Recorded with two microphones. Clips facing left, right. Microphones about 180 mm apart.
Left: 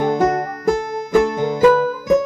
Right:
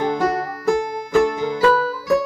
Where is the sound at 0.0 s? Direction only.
45° left (ahead or behind).